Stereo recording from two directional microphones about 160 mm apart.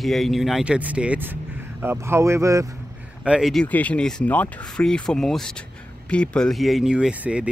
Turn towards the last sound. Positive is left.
turn(degrees=-5)  # may be behind; listen again after turning